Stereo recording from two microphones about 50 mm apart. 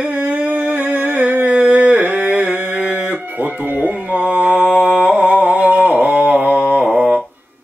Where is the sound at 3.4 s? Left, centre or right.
Right.